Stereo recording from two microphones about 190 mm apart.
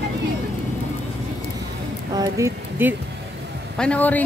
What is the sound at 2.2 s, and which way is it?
Speech, 15° right (ahead or behind).